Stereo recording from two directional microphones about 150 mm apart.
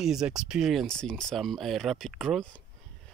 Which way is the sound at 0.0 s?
5° right (ahead or behind).